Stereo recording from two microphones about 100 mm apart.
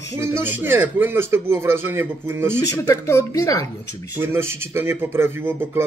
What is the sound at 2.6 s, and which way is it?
A man's voice, 35° left (ahead or behind).